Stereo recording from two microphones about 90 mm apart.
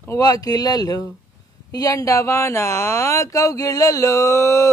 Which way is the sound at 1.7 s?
40° left (ahead or behind).